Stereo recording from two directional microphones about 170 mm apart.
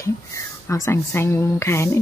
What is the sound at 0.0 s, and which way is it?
Speech, 15° left (ahead or behind).